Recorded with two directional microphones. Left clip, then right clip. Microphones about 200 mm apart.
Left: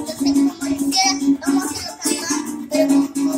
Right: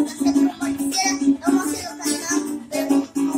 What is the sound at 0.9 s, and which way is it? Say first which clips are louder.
Music: left 3 dB; 15° right (ahead or behind).